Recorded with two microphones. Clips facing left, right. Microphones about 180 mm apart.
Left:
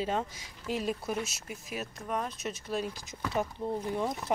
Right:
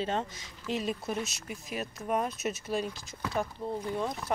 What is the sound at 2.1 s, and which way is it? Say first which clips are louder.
Speech: right 4 dB; 10° right (ahead or behind).